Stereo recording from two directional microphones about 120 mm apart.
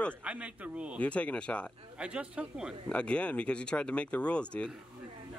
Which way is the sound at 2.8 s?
10° left (ahead or behind).